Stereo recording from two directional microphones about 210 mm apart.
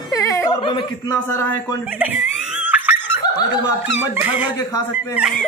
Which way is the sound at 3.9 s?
10° right (ahead or behind).